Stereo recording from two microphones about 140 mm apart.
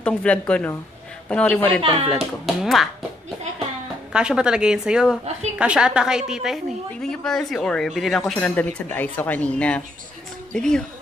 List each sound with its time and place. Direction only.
0.0 s speech: 5° left (ahead or behind)
1.8 s speech: 40° right (ahead or behind)
2.0 s a woman's voice: centre (ahead or behind)
4.1 s a woman's voice: 5° right (ahead or behind)
8.4 s a woman's voice: 10° left (ahead or behind)